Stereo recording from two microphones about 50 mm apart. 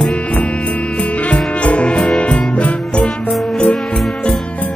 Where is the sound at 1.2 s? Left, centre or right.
Left.